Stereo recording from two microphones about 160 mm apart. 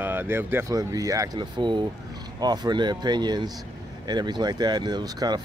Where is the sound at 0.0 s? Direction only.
15° right (ahead or behind).